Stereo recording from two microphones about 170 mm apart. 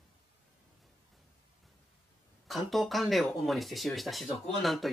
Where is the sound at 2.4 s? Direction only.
Centre (ahead or behind).